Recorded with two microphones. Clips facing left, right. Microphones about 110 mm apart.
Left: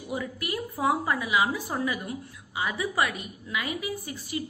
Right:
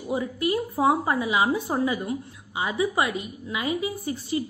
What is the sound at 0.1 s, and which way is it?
A woman's voice, 25° right (ahead or behind).